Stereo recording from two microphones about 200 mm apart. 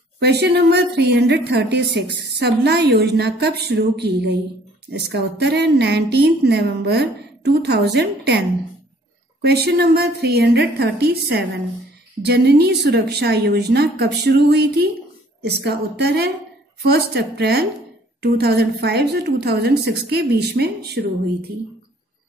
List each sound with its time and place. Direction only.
0.2 s a woman's voice: 55° right (ahead or behind)